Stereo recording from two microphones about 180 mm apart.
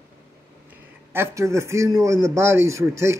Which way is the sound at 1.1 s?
15° right (ahead or behind).